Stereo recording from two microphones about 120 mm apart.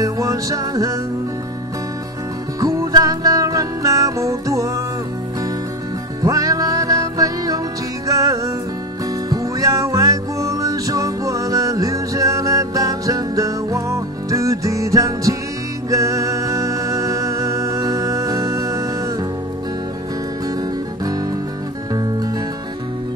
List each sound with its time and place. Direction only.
0.0 s music: 30° right (ahead or behind)
2.6 s music: 30° right (ahead or behind)
6.2 s music: 30° right (ahead or behind)